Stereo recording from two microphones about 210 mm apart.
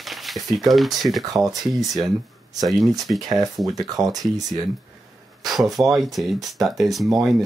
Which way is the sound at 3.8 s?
20° right (ahead or behind).